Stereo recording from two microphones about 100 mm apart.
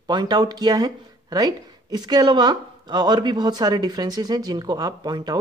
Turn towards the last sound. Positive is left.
turn(degrees=-45)  # may be behind; listen again after turning